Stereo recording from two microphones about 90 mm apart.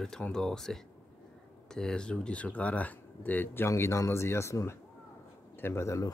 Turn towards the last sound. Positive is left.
turn(degrees=35)  # may be behind; listen again after turning